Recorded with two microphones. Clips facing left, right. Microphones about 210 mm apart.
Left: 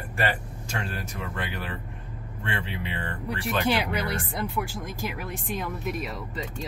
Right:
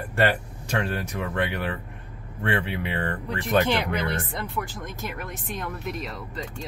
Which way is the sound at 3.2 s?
10° left (ahead or behind).